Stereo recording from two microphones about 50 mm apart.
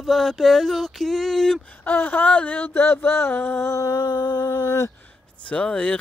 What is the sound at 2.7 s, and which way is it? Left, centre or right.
Speech, left.